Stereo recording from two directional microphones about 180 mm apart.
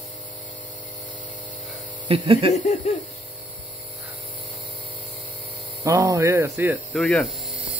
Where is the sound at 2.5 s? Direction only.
40° left (ahead or behind).